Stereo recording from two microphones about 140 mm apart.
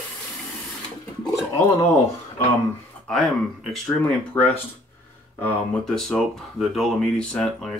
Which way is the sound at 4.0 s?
10° left (ahead or behind).